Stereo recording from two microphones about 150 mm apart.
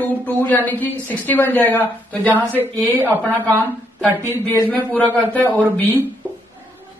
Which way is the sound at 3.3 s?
15° right (ahead or behind).